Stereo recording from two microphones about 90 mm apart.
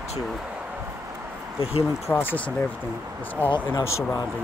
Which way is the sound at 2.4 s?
15° left (ahead or behind).